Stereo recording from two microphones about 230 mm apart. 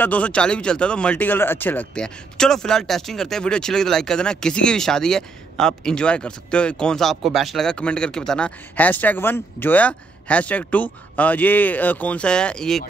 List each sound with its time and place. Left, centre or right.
0.0 s speech: centre